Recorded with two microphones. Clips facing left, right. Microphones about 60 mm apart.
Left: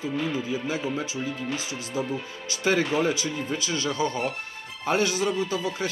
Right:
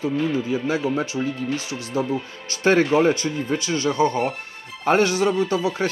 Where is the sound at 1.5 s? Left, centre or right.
Left.